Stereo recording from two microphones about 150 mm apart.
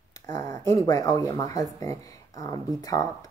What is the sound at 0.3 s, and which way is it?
Speech, 25° left (ahead or behind).